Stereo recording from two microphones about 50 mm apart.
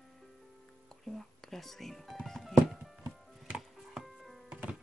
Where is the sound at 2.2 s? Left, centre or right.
Centre.